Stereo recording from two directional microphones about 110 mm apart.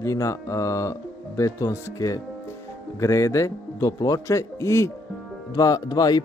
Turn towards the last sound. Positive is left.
turn(degrees=35)  # may be behind; listen again after turning